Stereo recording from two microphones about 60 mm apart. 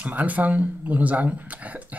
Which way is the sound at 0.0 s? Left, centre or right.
Right.